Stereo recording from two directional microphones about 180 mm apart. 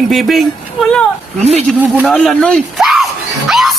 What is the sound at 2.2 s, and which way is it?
Speech, 5° left (ahead or behind).